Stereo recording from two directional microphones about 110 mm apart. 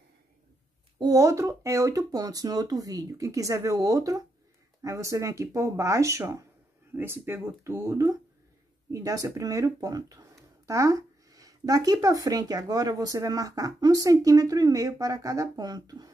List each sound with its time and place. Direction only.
0.9 s speech: 35° right (ahead or behind)